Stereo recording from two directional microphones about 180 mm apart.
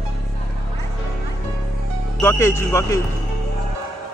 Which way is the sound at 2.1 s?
15° left (ahead or behind).